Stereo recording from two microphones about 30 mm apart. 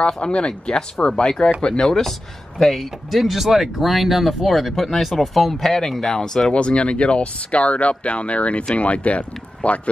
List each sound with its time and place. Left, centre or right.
0.0 s speech: left; by 2.0 s centre
2.6 s speech: centre
5.5 s speech: centre
6.5 s speech: left